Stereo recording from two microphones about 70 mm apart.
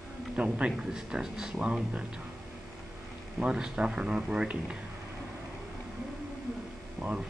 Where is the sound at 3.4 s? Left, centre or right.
Centre.